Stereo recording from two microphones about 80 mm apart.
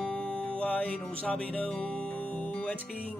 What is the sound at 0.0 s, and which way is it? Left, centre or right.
Music, centre.